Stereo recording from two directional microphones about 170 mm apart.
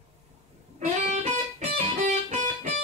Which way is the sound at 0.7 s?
40° right (ahead or behind).